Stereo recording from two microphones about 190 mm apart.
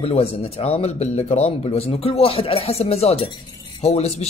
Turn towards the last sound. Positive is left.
turn(degrees=35)  # may be behind; listen again after turning